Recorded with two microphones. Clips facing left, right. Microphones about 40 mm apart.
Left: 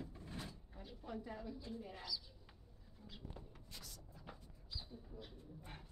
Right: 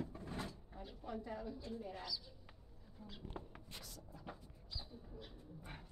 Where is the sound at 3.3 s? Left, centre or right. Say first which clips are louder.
Right 4 dB; right.